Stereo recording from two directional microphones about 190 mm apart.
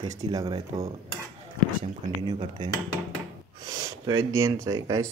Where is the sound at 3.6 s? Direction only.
20° right (ahead or behind).